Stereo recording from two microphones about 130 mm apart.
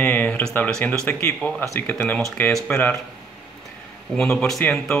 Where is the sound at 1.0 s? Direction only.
15° left (ahead or behind).